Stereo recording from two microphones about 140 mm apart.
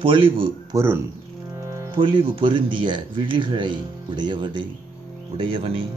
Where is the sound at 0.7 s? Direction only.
15° right (ahead or behind).